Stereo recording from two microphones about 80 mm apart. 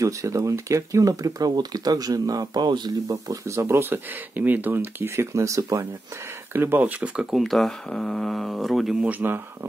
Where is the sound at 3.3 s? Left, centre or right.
Right.